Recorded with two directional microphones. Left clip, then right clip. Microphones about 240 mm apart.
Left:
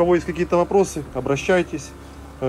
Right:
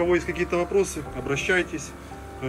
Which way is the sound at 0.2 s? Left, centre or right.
Left.